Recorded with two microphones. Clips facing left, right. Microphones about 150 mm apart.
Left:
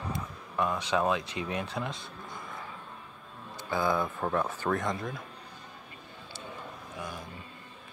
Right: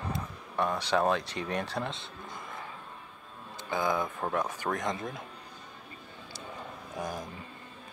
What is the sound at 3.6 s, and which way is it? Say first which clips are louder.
Speech: left 1 dB; 20° right (ahead or behind).